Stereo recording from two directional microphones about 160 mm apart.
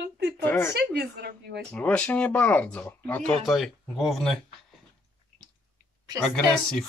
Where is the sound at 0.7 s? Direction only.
90° right.